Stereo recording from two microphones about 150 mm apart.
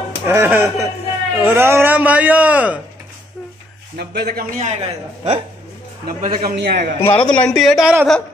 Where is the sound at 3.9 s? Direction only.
90° right.